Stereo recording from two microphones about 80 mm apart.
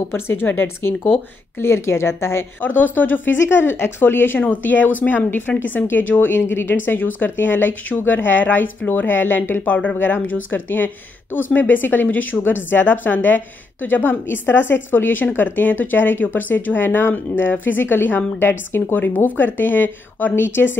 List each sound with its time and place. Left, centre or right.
0.1 s a woman's voice: left